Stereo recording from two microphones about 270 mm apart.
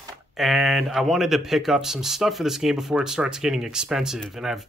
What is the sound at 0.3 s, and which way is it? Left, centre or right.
Speech, centre.